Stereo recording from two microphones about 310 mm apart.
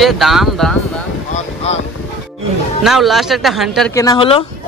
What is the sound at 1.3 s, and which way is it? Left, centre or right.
Boat, left.